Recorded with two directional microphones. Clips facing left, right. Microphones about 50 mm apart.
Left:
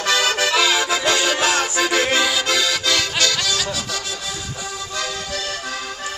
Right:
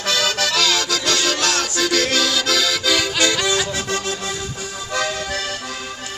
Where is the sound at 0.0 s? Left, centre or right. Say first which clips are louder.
Left 2 dB; centre.